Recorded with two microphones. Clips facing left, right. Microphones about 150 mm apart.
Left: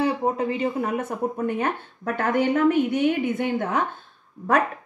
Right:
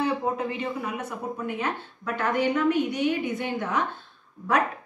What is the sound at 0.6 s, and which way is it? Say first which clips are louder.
Speech: left 6 dB; 45° left (ahead or behind).